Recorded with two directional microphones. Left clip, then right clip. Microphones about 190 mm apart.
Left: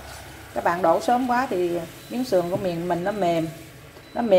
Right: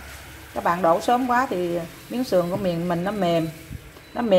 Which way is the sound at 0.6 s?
10° right (ahead or behind).